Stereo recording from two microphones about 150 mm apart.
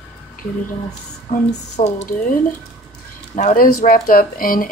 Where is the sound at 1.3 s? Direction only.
50° left (ahead or behind).